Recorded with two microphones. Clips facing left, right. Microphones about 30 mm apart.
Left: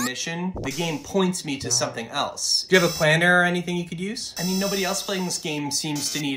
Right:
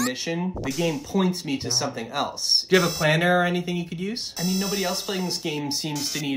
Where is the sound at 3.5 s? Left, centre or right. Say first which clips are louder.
Left 1 dB; left.